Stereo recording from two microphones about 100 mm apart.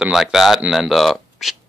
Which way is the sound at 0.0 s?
5° right (ahead or behind).